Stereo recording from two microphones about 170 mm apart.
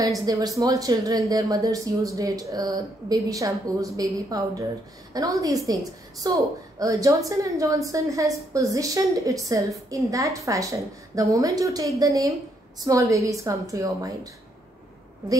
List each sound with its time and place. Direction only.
0.2 s speech: 20° right (ahead or behind)